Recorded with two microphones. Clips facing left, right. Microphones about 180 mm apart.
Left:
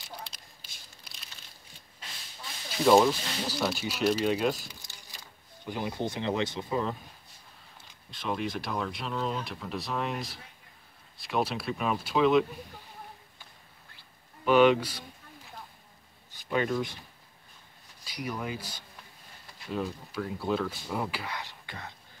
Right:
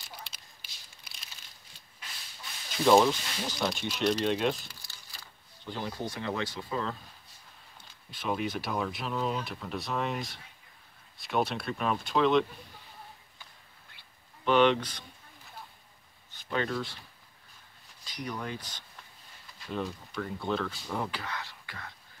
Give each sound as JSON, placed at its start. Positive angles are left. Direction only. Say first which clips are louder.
{"t": 2.8, "sound": "speech", "louder": "left 1 dB", "side_deg": 5}
{"t": 5.7, "sound": "speech", "louder": "left 3 dB", "side_deg": 15}
{"t": 8.1, "sound": "speech", "louder": "even", "side_deg": -5}
{"t": 14.4, "sound": "speech", "louder": "left 3 dB", "side_deg": 5}
{"t": 16.3, "sound": "speech", "louder": "left 3 dB", "side_deg": 10}
{"t": 18.0, "sound": "speech", "louder": "left 2 dB", "side_deg": 10}